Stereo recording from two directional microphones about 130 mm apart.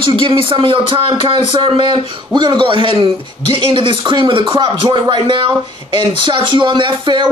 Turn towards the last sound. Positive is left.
turn(degrees=-40)  # may be behind; listen again after turning